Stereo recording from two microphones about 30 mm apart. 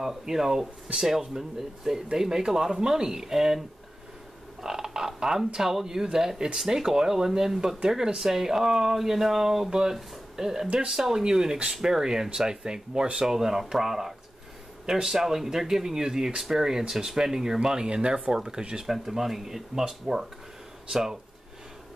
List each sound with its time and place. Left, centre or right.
0.3 s speech: centre
9.7 s speech: right
18.8 s speech: centre